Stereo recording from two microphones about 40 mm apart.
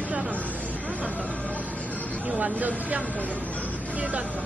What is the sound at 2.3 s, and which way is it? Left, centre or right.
Speech, right.